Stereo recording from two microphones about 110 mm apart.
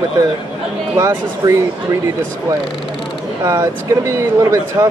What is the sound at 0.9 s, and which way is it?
Speech, 30° right (ahead or behind).